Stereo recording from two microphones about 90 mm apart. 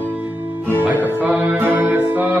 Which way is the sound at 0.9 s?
20° right (ahead or behind).